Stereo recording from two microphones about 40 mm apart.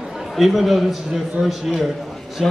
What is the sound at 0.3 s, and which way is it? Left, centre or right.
A man's voice, centre.